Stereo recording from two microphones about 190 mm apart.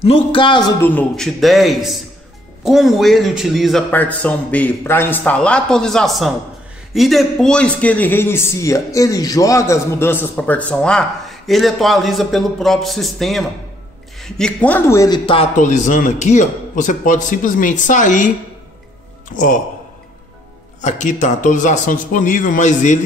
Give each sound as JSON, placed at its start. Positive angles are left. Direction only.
{"t": 0.0, "sound": "a man's voice", "side_deg": 30}
{"t": 15.5, "sound": "a man's voice", "side_deg": 40}
{"t": 19.3, "sound": "a man's voice", "side_deg": 45}
{"t": 20.8, "sound": "a man's voice", "side_deg": 40}